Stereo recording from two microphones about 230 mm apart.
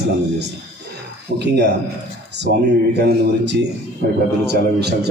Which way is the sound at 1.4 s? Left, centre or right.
Right.